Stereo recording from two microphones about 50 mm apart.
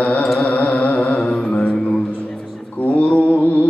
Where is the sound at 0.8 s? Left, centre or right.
Left.